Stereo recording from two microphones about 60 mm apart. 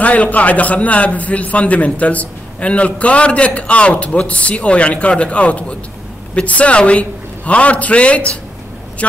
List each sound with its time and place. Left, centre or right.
0.0 s a man's voice: left